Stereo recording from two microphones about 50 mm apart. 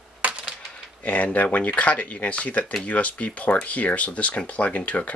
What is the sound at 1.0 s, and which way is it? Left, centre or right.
Speech, left.